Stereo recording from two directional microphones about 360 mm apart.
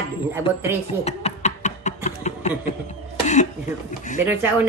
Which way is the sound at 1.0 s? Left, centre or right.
Centre.